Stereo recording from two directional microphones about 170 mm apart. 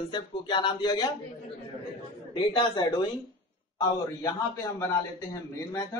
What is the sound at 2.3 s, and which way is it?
A man's voice, 25° left (ahead or behind).